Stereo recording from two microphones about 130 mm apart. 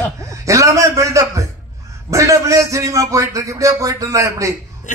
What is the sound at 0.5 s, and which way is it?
A man's voice, 25° right (ahead or behind).